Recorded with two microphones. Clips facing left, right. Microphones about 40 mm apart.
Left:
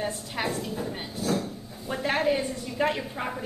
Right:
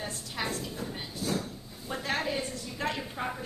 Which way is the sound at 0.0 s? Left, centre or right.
Centre.